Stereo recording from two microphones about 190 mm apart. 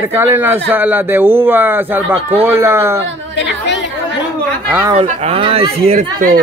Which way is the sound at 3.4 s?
65° left (ahead or behind).